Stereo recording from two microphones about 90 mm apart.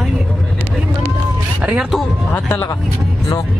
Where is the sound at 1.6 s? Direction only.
15° right (ahead or behind).